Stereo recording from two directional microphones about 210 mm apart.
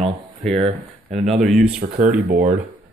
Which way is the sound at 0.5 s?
30° right (ahead or behind).